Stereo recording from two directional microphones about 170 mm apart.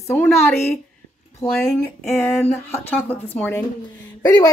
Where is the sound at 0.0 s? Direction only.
15° left (ahead or behind).